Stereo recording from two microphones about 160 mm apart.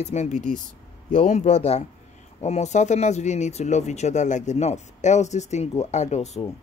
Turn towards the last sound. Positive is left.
turn(degrees=45)  # may be behind; listen again after turning